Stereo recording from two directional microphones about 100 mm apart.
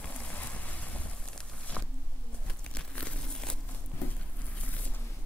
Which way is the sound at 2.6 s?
10° left (ahead or behind).